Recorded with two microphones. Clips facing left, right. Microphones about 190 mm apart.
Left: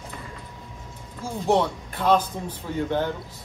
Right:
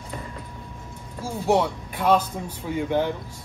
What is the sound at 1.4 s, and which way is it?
Speech, 10° right (ahead or behind).